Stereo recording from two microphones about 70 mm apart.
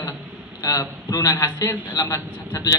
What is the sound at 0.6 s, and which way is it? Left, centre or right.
Speech, left.